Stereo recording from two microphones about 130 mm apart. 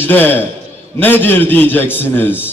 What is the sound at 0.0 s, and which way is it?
A man's voice, 15° left (ahead or behind).